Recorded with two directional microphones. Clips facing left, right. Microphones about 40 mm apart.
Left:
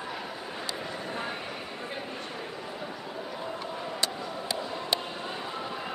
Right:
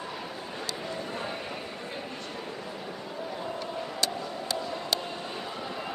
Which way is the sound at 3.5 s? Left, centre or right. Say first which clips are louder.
Left 1 dB; left.